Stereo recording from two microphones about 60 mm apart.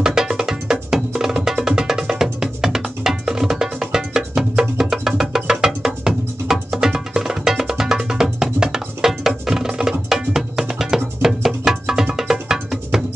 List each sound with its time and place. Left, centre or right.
0.0 s music: centre